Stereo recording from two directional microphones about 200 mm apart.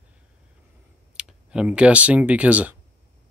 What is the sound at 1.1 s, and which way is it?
Speech, 5° right (ahead or behind).